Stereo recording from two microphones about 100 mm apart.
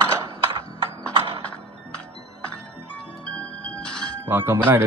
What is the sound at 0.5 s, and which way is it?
Horse, 60° right (ahead or behind).